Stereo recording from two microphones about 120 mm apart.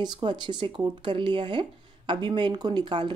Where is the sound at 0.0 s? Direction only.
35° right (ahead or behind).